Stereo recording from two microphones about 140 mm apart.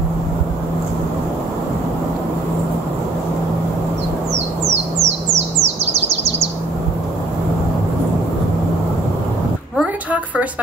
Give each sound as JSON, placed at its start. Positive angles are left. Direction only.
{"t": 4.6, "sound": "crow", "side_deg": -50}